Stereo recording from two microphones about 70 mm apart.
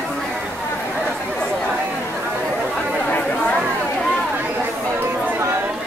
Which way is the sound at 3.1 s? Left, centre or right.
Left.